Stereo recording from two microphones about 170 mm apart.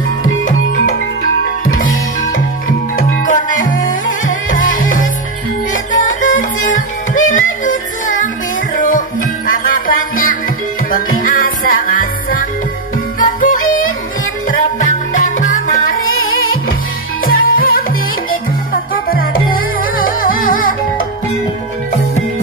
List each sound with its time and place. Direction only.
1.7 s music: 50° left (ahead or behind)
9.5 s music: 55° left (ahead or behind)
17.3 s music: 60° left (ahead or behind)
19.0 s music: 60° left (ahead or behind)